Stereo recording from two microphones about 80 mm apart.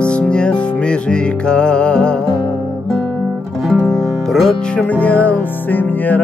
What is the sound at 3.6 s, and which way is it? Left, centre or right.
Music, centre.